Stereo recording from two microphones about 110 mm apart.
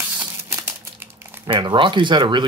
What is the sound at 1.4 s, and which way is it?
Speech, 40° right (ahead or behind).